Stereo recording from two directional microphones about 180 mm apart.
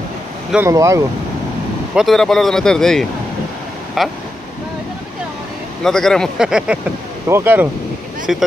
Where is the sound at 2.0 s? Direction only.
Centre (ahead or behind).